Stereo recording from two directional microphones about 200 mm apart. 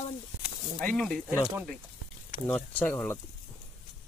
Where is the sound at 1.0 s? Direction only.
5° left (ahead or behind).